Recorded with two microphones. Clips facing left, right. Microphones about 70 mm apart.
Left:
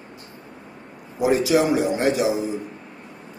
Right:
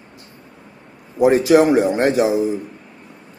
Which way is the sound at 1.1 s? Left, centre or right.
Right.